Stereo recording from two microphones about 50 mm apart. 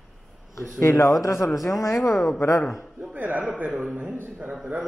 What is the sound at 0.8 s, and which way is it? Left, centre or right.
A man's voice, left.